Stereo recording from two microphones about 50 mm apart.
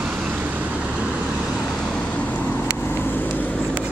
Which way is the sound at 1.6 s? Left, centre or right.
Centre.